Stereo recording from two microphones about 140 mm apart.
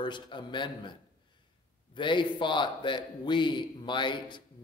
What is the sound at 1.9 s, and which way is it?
A man's voice, 35° left (ahead or behind).